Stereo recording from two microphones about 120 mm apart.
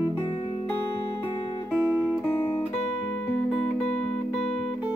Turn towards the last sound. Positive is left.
turn(degrees=5)  # may be behind; listen again after turning